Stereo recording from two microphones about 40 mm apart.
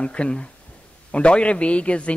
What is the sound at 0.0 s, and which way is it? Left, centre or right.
A man's voice, left.